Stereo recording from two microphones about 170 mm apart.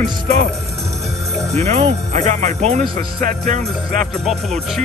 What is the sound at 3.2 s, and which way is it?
Speech, 55° right (ahead or behind).